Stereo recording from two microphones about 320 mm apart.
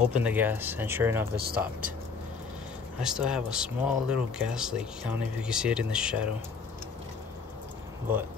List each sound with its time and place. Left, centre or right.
0.1 s speech: centre
1.3 s speech: right
3.0 s speech: centre